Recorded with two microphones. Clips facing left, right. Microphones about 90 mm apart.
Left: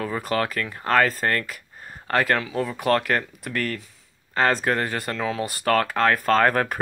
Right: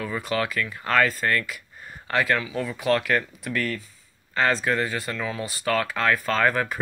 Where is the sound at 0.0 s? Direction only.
45° left (ahead or behind).